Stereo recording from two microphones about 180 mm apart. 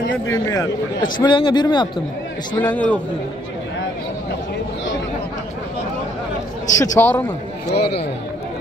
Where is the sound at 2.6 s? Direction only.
10° left (ahead or behind).